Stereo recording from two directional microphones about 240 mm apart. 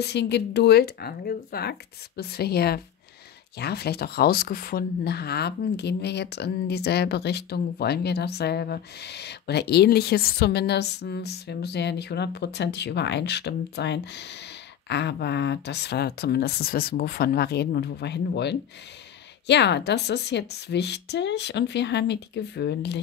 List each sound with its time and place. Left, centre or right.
0.0 s speech: left